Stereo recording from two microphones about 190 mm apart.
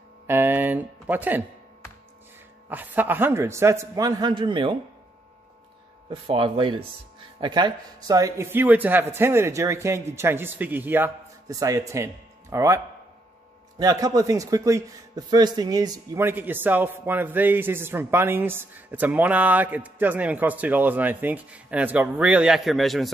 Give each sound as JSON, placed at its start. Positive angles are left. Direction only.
{"t": 0.3, "sound": "speech", "side_deg": -10}
{"t": 2.7, "sound": "speech", "side_deg": -10}
{"t": 6.0, "sound": "speech", "side_deg": -30}